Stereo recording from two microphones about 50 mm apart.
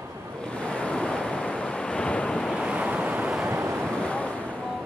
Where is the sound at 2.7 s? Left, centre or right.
Right.